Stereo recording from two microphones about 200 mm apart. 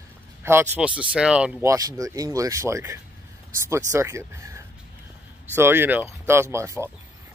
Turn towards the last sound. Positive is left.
turn(degrees=-15)  # may be behind; listen again after turning